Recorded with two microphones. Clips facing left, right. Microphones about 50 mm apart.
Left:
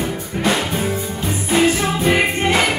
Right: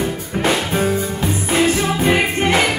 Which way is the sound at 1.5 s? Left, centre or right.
Centre.